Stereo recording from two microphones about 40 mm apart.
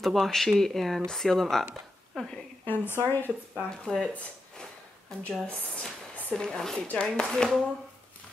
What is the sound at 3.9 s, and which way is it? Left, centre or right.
Speech, left.